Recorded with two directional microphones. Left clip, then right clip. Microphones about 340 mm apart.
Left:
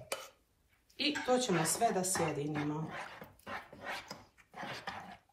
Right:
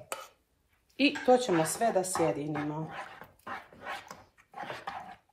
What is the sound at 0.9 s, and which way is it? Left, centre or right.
Speech, right.